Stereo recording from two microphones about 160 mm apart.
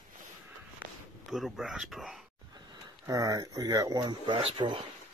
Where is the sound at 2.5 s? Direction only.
20° right (ahead or behind).